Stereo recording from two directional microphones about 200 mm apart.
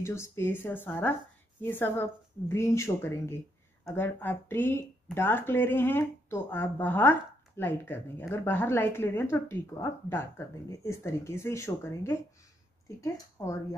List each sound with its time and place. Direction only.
0.0 s speech: 15° left (ahead or behind)